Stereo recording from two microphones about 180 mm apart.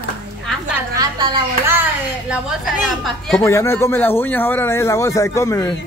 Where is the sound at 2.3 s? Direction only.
Centre (ahead or behind).